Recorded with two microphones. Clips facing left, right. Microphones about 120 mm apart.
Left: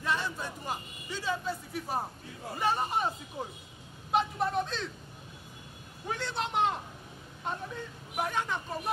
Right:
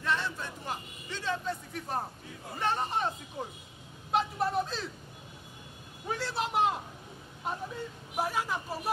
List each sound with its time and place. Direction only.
0.0 s a man's voice: 10° left (ahead or behind)
4.1 s a man's voice: centre (ahead or behind)
6.0 s a woman's voice: 5° right (ahead or behind)